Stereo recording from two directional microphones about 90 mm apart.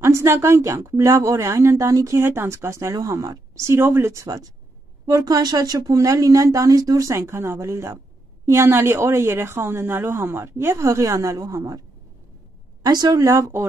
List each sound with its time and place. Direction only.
0.0 s a woman's voice: 30° right (ahead or behind)
12.8 s speech: 45° right (ahead or behind); by 13.7 s 30° right (ahead or behind)